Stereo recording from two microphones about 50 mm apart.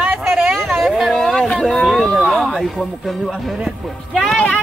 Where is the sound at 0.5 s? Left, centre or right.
Centre.